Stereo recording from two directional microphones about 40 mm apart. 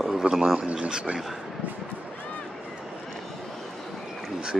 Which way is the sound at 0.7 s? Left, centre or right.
Right.